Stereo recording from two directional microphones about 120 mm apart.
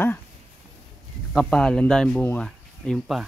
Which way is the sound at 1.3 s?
5° left (ahead or behind).